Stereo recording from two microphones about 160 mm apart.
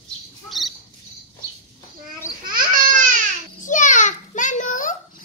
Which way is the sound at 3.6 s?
50° left (ahead or behind).